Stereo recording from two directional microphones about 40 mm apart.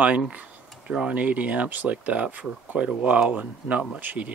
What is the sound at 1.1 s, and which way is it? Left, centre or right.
Speech, right.